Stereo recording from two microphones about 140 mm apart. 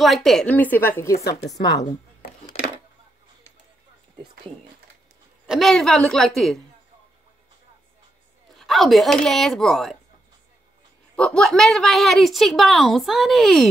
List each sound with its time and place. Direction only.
0.0 s a woman's voice: centre (ahead or behind)
1.5 s speech: 30° left (ahead or behind)
5.5 s a woman's voice: centre (ahead or behind)
8.5 s a woman's voice: centre (ahead or behind)
11.1 s a woman's voice: 5° left (ahead or behind)